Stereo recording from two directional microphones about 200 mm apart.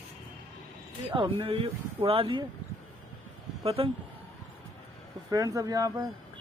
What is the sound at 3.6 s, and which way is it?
Speech, 30° right (ahead or behind).